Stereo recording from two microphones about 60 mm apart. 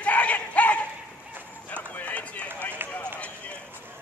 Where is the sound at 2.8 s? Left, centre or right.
Right.